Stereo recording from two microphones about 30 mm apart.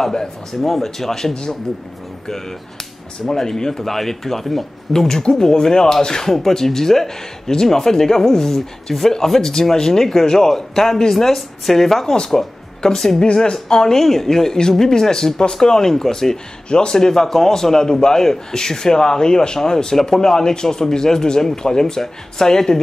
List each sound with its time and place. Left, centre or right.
0.6 s speech: centre
3.3 s a man's voice: centre
13.9 s speech: centre
16.6 s a man's voice: left